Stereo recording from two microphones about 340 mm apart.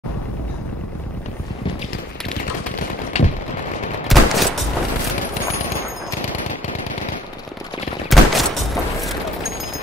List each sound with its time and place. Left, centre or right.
3.1 s a sound: centre
4.1 s gunshot: centre
8.1 s fusillade: centre